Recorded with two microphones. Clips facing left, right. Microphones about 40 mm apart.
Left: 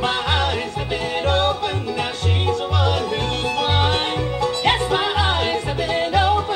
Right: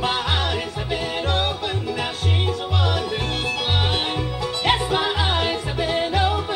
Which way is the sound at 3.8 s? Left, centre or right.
Centre.